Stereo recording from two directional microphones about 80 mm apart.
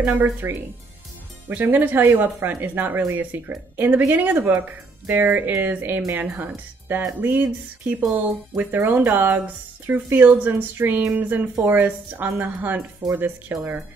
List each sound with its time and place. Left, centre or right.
0.0 s speech: right
9.8 s speech: right
10.2 s speech: right